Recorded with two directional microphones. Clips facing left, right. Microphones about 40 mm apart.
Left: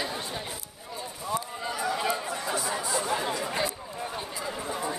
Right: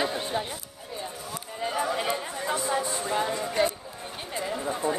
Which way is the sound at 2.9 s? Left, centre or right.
Left.